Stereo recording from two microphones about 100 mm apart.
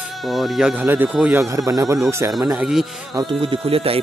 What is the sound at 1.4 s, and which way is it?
Speech, 30° right (ahead or behind).